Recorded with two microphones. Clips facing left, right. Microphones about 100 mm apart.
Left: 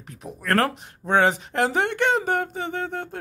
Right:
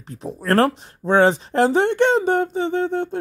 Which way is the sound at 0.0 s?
30° right (ahead or behind).